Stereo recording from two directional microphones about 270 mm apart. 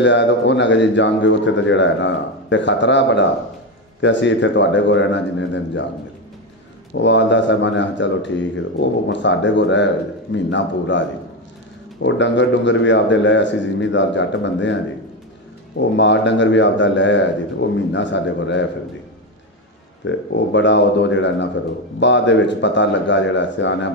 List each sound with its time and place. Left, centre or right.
0.0 s a man's voice: left
6.9 s a man's voice: left
15.8 s a man's voice: left
20.1 s a man's voice: left